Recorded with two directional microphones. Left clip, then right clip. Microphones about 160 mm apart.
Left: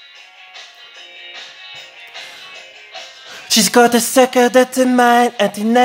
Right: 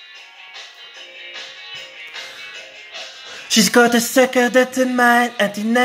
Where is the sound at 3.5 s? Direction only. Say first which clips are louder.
Left 2 dB; 15° left (ahead or behind).